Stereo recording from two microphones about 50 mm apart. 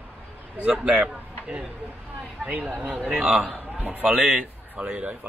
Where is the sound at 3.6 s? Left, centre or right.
Right.